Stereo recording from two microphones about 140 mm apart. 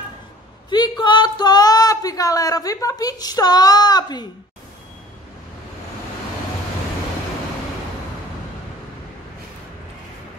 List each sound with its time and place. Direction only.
0.7 s speech: 30° left (ahead or behind)